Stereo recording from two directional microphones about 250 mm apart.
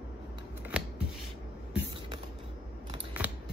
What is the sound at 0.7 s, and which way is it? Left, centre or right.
Scissors, centre.